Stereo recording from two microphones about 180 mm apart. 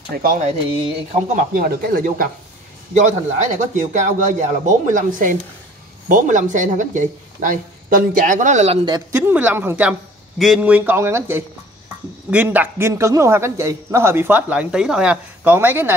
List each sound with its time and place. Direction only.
0.1 s speech: 55° right (ahead or behind)
0.5 s speech: 35° right (ahead or behind)
1.5 s speech: 55° right (ahead or behind)
3.4 s speech: 45° right (ahead or behind)
9.1 s a man's voice: 10° right (ahead or behind)